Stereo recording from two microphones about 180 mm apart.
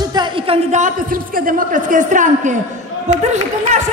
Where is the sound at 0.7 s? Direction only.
45° right (ahead or behind).